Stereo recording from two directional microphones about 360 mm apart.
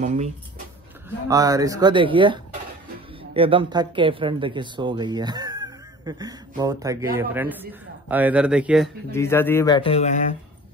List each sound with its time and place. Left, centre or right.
0.0 s speech: centre
1.3 s a man's voice: centre